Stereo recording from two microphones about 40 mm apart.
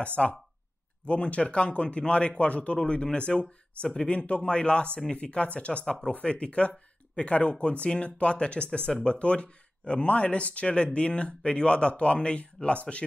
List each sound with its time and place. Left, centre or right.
0.0 s speech: left